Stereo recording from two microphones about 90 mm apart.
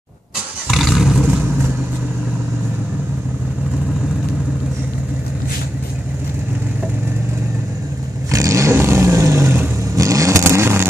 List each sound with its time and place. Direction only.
0.7 s vehicle: centre (ahead or behind)
1.2 s vehicle: 20° right (ahead or behind)
8.3 s vehicle: 35° right (ahead or behind)